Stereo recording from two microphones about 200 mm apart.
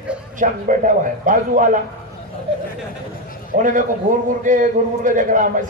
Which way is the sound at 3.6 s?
40° right (ahead or behind).